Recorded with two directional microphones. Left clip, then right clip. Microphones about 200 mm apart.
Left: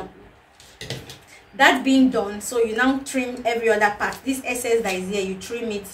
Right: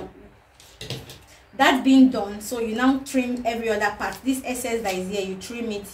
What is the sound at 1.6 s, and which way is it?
A woman's voice, 20° right (ahead or behind).